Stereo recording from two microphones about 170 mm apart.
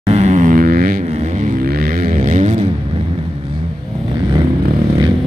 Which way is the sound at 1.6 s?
60° right (ahead or behind).